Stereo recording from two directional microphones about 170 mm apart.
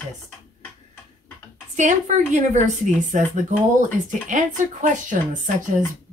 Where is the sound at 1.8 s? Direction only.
45° right (ahead or behind).